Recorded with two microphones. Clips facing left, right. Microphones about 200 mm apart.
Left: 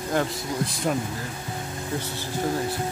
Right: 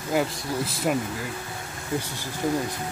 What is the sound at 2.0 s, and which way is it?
Speech, 15° right (ahead or behind).